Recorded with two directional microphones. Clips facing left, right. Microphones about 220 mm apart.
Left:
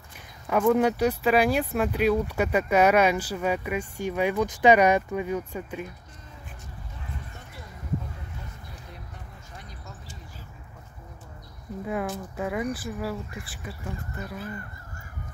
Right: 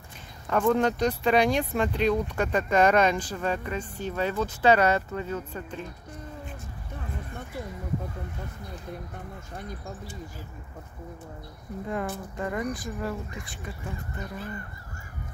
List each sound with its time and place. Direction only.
0.5 s speech: 10° left (ahead or behind)
9.6 s speech: 50° right (ahead or behind)
11.8 s speech: 5° left (ahead or behind)